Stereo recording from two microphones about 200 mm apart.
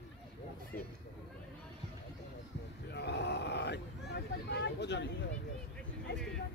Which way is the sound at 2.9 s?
55° left (ahead or behind).